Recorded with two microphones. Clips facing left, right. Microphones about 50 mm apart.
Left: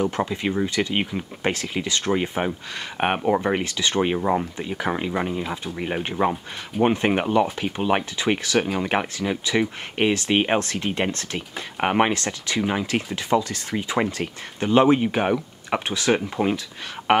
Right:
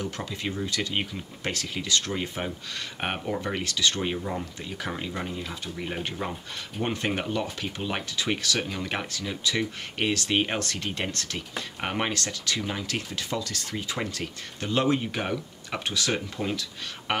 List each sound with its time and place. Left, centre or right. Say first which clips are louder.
0.0 s speech: left 9 dB; left
4.2 s speech: left 10 dB; left
4.6 s speech: left 8 dB; left